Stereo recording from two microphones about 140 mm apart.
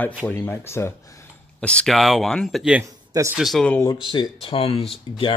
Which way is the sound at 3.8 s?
30° left (ahead or behind).